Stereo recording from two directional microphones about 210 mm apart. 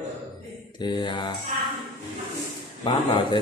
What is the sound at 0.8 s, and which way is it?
Speech, 25° left (ahead or behind).